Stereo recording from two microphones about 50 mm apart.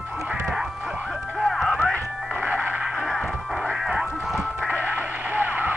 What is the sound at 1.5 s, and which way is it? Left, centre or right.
Music, centre.